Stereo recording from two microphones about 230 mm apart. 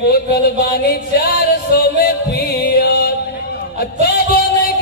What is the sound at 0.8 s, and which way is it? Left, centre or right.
Music, left.